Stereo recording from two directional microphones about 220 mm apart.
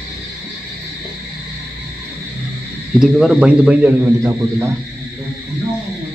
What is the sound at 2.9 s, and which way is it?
A man's voice, centre (ahead or behind).